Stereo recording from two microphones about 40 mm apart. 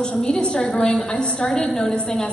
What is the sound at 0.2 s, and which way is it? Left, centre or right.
Speech, left.